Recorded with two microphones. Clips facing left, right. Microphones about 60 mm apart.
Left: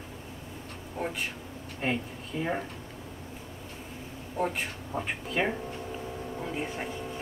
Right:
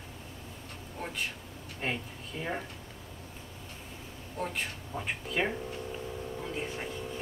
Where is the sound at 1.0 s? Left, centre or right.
Centre.